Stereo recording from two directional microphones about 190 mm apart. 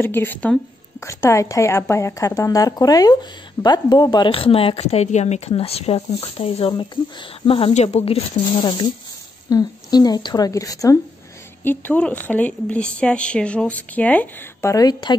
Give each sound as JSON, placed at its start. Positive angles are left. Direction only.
{"t": 0.0, "sound": "a woman's voice", "side_deg": 10}